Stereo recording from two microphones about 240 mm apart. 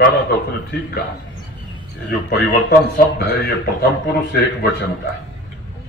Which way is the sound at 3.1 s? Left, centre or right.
Left.